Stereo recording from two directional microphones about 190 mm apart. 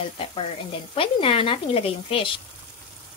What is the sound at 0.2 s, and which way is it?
A woman's voice, 30° left (ahead or behind).